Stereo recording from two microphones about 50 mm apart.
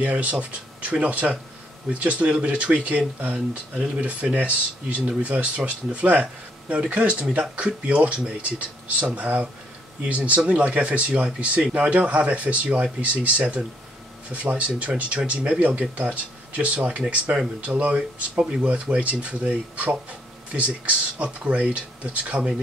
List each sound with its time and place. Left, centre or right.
0.0 s speech: right
14.3 s speech: right